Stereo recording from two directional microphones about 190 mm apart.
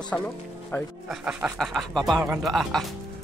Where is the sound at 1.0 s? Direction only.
5° right (ahead or behind).